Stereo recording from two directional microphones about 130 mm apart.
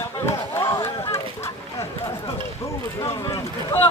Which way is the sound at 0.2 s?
20° left (ahead or behind).